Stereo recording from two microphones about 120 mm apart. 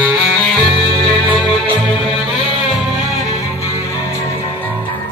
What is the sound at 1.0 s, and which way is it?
Music, 5° left (ahead or behind).